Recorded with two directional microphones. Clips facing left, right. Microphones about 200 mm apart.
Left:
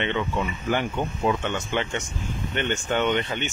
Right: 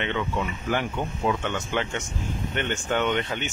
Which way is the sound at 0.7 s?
Centre (ahead or behind).